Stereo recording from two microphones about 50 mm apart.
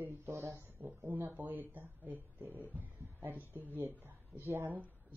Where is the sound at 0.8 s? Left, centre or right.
Right.